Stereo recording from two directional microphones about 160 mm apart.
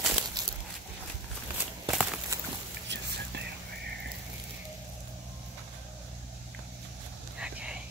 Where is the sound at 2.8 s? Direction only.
90° right.